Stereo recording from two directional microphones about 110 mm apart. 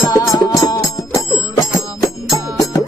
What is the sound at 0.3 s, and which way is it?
Music, 30° left (ahead or behind).